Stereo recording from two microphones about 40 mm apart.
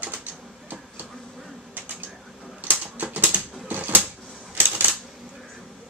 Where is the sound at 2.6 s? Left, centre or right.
Right.